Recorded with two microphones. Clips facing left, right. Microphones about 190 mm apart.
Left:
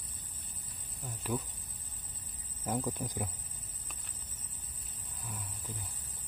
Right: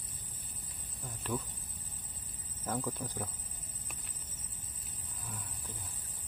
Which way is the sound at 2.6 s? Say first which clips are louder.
Left 2 dB; 15° left (ahead or behind).